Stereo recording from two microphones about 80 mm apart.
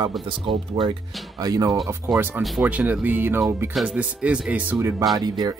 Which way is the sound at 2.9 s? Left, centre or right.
Right.